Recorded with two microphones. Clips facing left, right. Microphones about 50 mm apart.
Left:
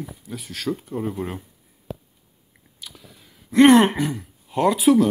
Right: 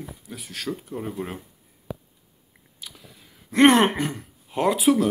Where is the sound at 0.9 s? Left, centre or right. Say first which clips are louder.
Left 4 dB; centre.